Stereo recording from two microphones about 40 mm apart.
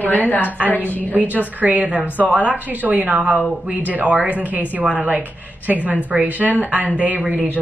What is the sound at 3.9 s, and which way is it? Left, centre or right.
Speech, right.